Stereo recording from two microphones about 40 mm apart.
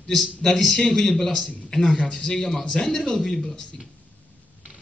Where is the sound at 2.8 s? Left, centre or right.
Centre.